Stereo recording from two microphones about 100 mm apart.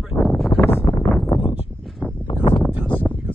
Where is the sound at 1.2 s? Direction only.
65° left (ahead or behind).